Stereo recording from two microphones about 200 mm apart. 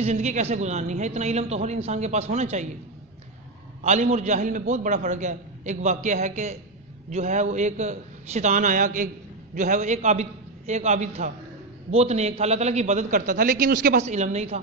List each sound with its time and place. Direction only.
0.0 s a man's voice: 35° right (ahead or behind)
3.8 s a man's voice: 35° right (ahead or behind)
14.0 s a man's voice: 35° right (ahead or behind)